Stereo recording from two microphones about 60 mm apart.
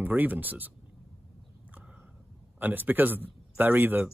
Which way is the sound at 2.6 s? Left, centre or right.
Right.